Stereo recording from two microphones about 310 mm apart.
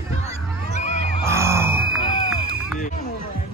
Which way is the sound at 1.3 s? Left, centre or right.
Centre.